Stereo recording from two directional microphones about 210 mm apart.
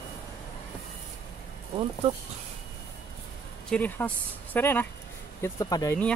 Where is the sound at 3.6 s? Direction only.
5° left (ahead or behind).